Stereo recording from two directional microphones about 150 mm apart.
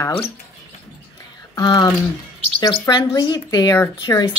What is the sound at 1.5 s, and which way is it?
Speech, 25° left (ahead or behind).